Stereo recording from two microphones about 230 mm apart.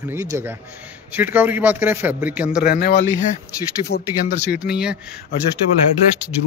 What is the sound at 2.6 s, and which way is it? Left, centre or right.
A man's voice, left.